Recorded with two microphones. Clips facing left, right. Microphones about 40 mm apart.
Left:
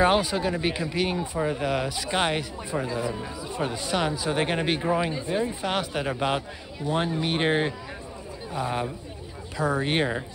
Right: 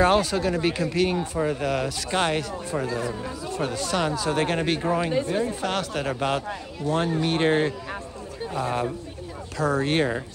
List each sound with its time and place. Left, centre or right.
0.0 s speech: centre